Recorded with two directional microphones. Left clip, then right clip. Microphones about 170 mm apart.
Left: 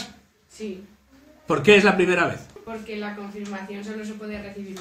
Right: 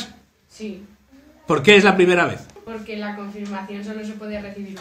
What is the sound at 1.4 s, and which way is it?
Speech, 30° right (ahead or behind).